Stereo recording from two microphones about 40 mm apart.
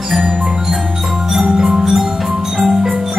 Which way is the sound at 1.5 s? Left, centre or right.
Right.